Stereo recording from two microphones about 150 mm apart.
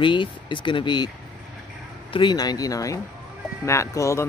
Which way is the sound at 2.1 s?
30° left (ahead or behind).